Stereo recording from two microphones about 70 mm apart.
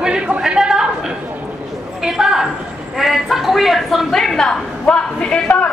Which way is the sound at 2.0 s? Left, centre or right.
Centre.